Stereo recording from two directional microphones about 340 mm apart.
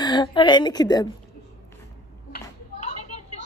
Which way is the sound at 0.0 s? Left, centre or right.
Centre.